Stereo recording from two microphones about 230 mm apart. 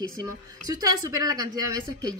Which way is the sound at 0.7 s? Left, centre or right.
Centre.